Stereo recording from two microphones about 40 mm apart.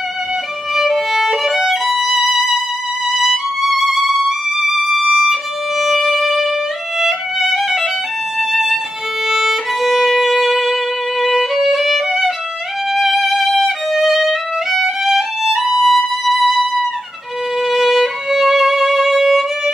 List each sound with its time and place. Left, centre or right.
0.7 s violin: centre
3.2 s music: centre
7.0 s violin: centre
15.8 s music: centre
17.6 s violin: centre